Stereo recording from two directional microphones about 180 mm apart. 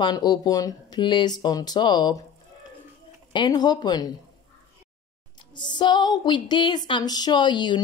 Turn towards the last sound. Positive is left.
turn(degrees=25)  # may be behind; listen again after turning